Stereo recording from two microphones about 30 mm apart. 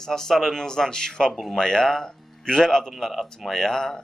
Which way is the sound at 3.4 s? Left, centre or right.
Centre.